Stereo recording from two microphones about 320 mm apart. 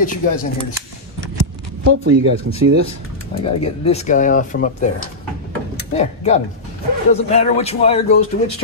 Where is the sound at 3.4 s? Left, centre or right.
Centre.